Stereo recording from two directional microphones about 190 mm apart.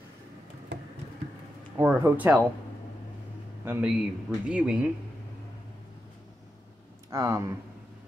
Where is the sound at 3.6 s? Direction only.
10° right (ahead or behind).